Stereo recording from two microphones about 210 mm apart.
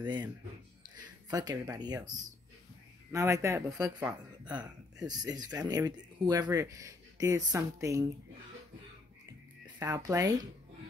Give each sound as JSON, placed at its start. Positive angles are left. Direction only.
{"t": 0.0, "sound": "speech", "side_deg": -20}
{"t": 5.0, "sound": "speech", "side_deg": -20}
{"t": 9.8, "sound": "speech", "side_deg": -15}